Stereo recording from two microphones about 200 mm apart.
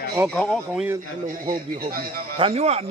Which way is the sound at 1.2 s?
45° right (ahead or behind).